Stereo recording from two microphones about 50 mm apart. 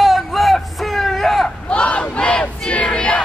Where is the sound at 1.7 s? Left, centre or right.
Left.